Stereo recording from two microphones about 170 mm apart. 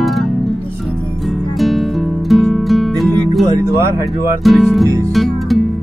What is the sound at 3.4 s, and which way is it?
Music, 15° right (ahead or behind).